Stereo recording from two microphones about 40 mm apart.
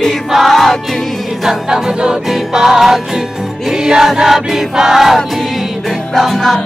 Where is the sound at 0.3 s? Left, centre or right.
Centre.